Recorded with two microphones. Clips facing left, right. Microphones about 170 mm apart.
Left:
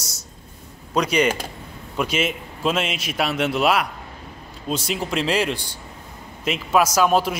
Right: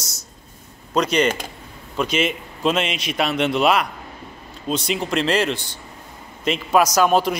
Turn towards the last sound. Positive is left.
turn(degrees=5)  # may be behind; listen again after turning